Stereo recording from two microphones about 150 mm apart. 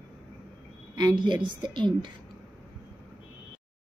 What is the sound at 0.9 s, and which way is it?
A woman's voice, 30° right (ahead or behind).